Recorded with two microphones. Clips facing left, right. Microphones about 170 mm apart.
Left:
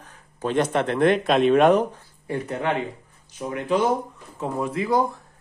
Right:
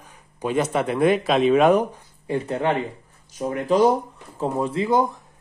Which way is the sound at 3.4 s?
40° right (ahead or behind).